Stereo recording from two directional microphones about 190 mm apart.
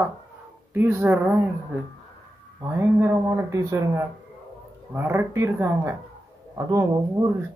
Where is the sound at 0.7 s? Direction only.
10° right (ahead or behind).